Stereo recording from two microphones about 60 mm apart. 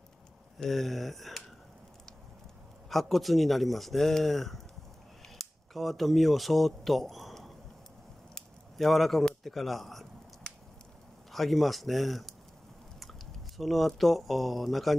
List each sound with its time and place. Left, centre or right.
0.6 s speech: centre
2.9 s speech: centre
8.4 s a sound: centre
11.3 s speech: centre